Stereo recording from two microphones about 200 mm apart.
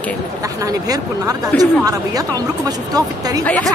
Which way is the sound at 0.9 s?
20° right (ahead or behind).